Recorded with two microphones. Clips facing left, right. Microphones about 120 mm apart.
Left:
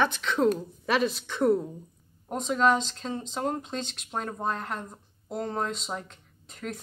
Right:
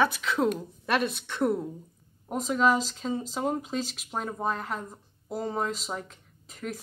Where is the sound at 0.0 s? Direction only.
5° right (ahead or behind).